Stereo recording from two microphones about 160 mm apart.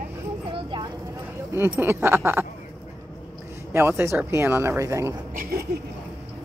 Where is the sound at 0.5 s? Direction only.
30° right (ahead or behind).